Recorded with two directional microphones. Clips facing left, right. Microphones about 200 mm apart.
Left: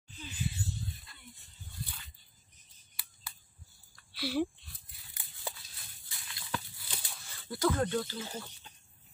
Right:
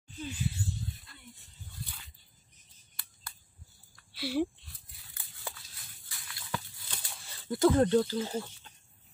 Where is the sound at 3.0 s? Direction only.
5° left (ahead or behind).